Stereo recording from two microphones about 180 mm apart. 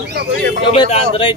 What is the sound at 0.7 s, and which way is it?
Speech, 30° left (ahead or behind).